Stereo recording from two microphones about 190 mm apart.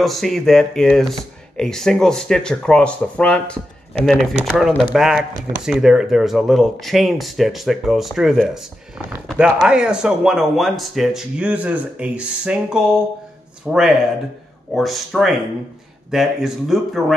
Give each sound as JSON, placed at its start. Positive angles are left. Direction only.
{"t": 0.0, "sound": "speech", "side_deg": 0}